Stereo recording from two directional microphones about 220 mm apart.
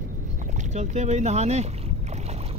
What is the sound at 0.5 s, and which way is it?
Speech, 30° right (ahead or behind).